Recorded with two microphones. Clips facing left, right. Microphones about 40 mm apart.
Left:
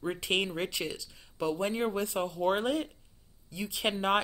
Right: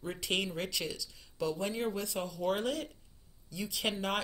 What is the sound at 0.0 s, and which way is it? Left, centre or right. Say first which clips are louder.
Speech: left 4 dB; left.